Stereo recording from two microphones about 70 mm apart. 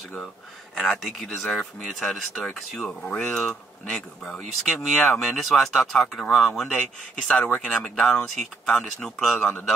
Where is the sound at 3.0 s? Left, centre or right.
Centre.